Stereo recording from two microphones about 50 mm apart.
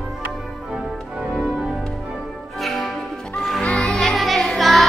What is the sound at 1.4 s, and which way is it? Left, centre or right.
Organ, centre.